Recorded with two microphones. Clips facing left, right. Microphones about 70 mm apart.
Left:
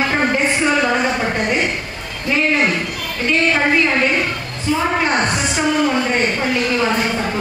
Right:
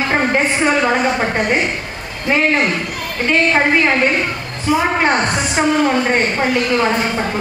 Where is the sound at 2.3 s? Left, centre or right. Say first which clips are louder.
Right 1 dB; right.